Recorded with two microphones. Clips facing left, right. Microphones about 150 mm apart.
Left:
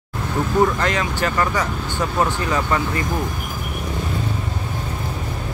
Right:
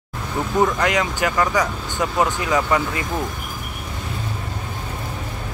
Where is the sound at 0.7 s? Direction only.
15° right (ahead or behind).